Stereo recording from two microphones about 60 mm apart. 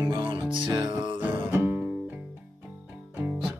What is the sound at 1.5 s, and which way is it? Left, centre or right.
Music, right.